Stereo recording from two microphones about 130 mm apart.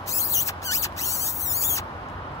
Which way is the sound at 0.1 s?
25° left (ahead or behind).